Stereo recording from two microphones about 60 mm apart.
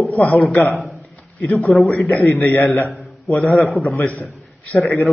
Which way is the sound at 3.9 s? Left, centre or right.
Left.